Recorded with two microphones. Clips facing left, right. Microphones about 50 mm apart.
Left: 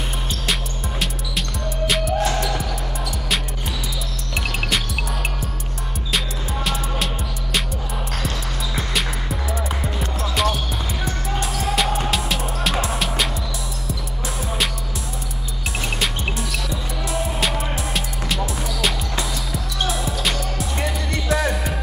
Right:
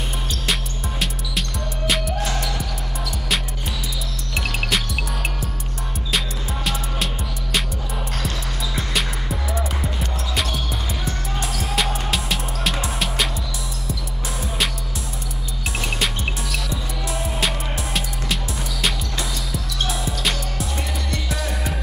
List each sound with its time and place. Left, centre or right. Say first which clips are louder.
0.5 s music: even; centre
4.4 s music: even; centre
6.1 s music: left 1 dB; centre
8.7 s music: left 1 dB; centre
16.0 s music: left 1 dB; centre
21.3 s music: left 11 dB; left